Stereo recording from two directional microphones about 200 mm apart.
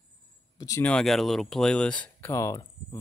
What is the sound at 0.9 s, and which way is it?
Speech, centre (ahead or behind).